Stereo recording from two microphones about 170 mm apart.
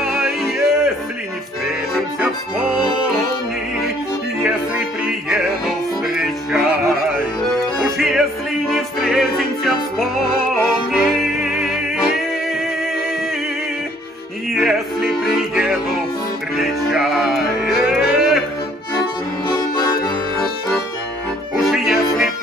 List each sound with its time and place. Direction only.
0.1 s music: centre (ahead or behind)
4.4 s music: 5° right (ahead or behind)
7.5 s accordion: centre (ahead or behind)
8.6 s music: centre (ahead or behind)
14.5 s music: centre (ahead or behind)
19.4 s accordion: 25° left (ahead or behind)
21.5 s music: centre (ahead or behind)